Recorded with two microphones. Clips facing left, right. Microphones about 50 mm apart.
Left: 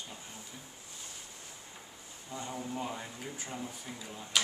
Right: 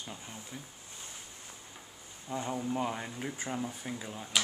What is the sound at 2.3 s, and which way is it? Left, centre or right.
Speech, right.